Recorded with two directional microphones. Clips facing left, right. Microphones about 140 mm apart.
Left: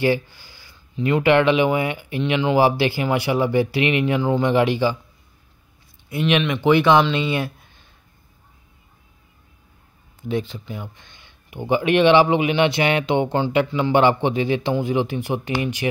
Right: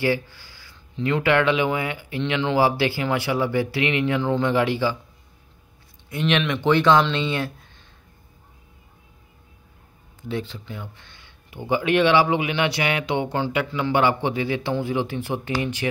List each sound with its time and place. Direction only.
0.0 s speech: 20° left (ahead or behind)
6.0 s speech: 10° left (ahead or behind)
10.2 s speech: 15° left (ahead or behind)